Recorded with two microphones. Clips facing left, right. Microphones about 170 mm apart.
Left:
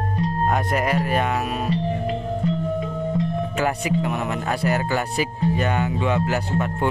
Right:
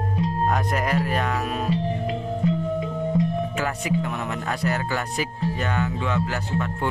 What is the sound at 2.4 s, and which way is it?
Music, 15° right (ahead or behind).